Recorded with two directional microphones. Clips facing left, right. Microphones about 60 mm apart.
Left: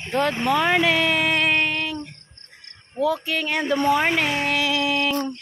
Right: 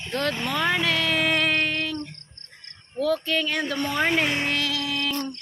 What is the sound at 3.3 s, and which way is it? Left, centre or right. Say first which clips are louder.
Speech: left 2 dB; centre.